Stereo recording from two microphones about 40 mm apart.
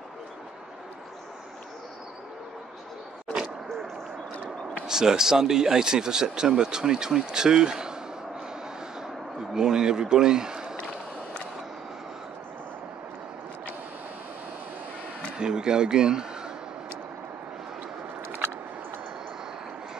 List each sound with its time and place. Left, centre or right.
4.8 s speech: centre
9.0 s a sound: centre
15.3 s speech: centre